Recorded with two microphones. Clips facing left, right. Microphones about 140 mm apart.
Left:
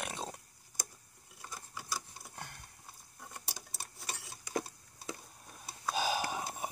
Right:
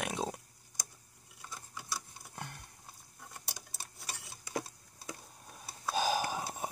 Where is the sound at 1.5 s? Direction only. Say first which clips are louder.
Left 1 dB; 10° left (ahead or behind).